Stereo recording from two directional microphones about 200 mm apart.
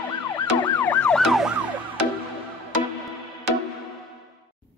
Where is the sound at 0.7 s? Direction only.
5° left (ahead or behind).